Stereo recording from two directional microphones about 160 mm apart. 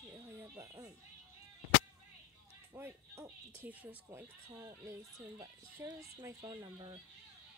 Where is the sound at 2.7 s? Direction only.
15° right (ahead or behind).